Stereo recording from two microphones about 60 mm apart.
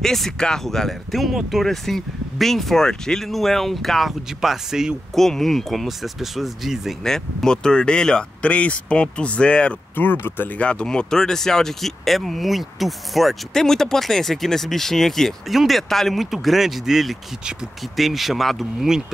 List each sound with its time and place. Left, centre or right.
0.0 s speech: centre
5.1 s speech: centre
7.1 s speech: centre
9.9 s speech: left
10.6 s speech: centre